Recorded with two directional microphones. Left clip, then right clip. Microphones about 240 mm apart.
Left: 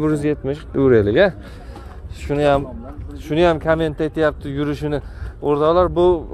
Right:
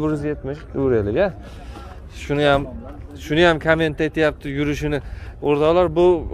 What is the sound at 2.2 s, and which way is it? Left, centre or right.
A man's voice, centre.